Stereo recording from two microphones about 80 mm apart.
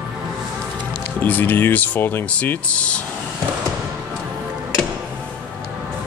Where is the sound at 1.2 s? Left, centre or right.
Left.